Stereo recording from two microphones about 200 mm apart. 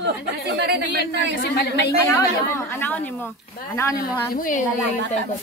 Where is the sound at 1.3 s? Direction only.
55° left (ahead or behind).